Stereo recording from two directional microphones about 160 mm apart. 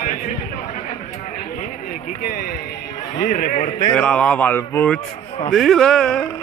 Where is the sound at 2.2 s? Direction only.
65° left (ahead or behind).